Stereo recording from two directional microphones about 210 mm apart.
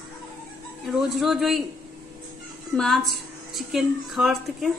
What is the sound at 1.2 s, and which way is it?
Speech, centre (ahead or behind).